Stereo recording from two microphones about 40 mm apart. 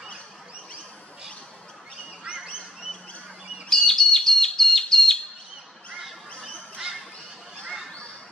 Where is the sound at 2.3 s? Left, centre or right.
Centre.